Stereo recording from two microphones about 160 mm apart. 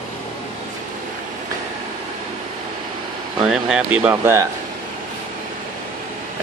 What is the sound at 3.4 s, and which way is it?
Speech, 5° right (ahead or behind).